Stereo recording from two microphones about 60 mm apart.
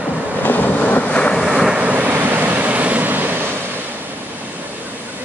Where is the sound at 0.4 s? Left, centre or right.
Left.